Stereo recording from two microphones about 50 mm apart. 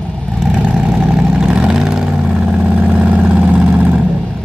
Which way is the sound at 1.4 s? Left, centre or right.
Centre.